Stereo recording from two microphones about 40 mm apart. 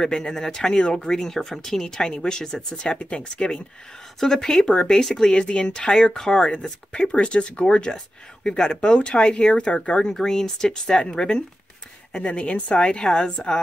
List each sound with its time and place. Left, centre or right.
0.0 s speech: centre
1.3 s speech: centre
5.3 s speech: left
10.1 s speech: centre